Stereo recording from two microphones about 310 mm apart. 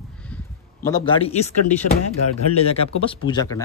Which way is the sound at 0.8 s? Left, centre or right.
Centre.